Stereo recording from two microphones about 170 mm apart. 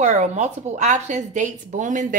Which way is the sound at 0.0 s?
45° right (ahead or behind).